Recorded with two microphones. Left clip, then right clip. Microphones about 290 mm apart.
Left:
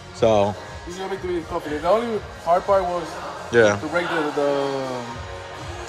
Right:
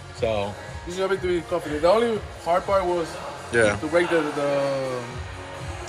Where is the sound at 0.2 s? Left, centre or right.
Left.